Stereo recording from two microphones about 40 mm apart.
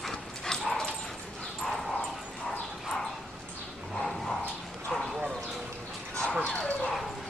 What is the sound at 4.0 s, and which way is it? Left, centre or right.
Dog, centre.